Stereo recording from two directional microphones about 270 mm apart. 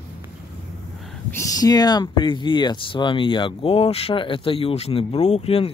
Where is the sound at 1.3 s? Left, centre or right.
Centre.